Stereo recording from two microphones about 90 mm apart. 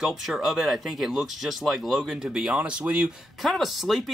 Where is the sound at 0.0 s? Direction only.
5° right (ahead or behind).